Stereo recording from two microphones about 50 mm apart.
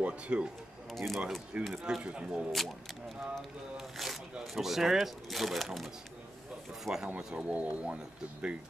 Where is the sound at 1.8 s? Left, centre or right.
Centre.